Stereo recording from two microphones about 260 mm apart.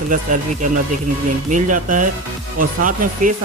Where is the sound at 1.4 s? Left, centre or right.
Right.